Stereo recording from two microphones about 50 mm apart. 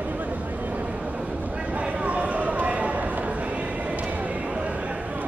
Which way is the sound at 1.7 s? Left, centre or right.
Right.